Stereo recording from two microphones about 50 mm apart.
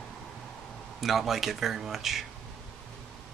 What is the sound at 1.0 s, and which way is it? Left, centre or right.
Speech, centre.